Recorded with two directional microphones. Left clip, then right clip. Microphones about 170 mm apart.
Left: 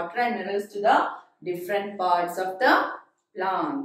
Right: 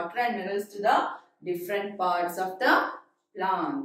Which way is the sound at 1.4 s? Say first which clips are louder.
Left 3 dB; 10° left (ahead or behind).